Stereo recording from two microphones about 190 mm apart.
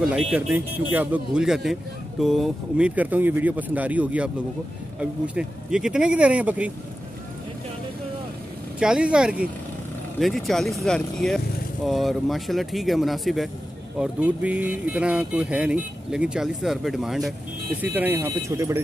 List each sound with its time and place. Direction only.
0.0 s speech: 5° right (ahead or behind)
8.7 s speech: 5° right (ahead or behind)